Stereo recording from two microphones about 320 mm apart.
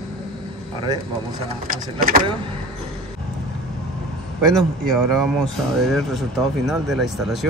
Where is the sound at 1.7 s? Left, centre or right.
Right.